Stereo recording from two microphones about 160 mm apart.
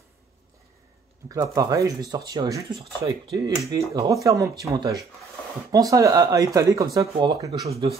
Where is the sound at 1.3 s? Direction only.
20° right (ahead or behind).